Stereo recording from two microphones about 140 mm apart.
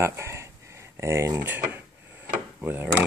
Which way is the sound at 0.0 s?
20° right (ahead or behind).